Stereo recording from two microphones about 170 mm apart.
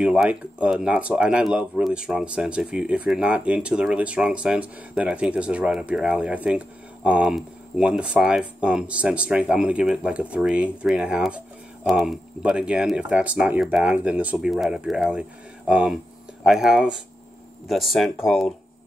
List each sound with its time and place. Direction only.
0.0 s speech: 5° right (ahead or behind)